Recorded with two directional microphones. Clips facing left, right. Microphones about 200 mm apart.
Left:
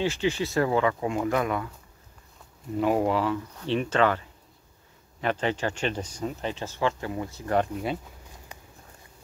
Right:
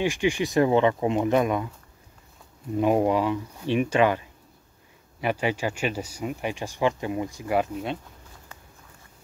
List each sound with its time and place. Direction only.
0.0 s speech: 15° right (ahead or behind)
2.8 s speech: 20° right (ahead or behind); by 8.0 s centre (ahead or behind)